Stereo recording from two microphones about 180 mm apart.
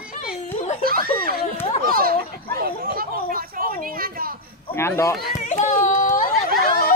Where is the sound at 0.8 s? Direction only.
55° right (ahead or behind).